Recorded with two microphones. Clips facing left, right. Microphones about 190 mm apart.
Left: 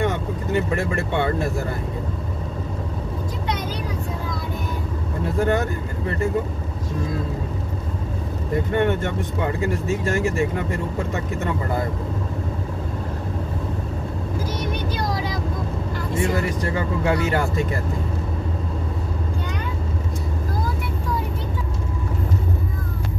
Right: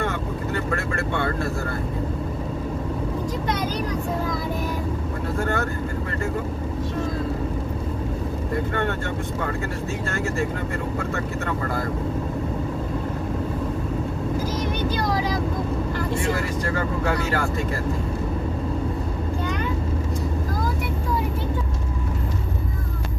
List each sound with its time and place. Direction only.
0.0 s speech: 15° left (ahead or behind)
5.4 s speech: 20° left (ahead or behind)
8.7 s speech: 15° left (ahead or behind)